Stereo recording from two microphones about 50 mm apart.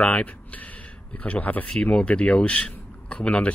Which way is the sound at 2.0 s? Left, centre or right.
Left.